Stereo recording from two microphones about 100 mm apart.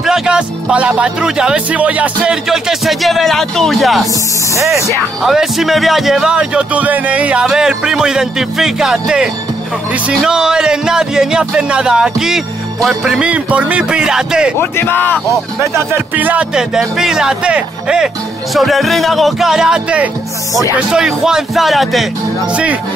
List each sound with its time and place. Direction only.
0.0 s speech: 5° right (ahead or behind)
2.4 s speech: 5° right (ahead or behind)
4.6 s speech: 30° right (ahead or behind)
5.2 s speech: 5° right (ahead or behind)
14.6 s speech: 20° left (ahead or behind)
15.6 s speech: 30° right (ahead or behind)
16.2 s speech: 15° right (ahead or behind)
16.5 s speech: 5° right (ahead or behind)
22.5 s speech: 15° right (ahead or behind)